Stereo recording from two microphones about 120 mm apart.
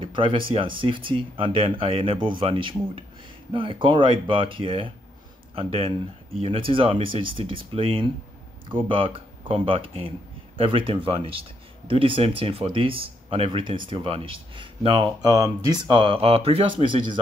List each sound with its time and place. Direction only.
0.0 s speech: 45° right (ahead or behind)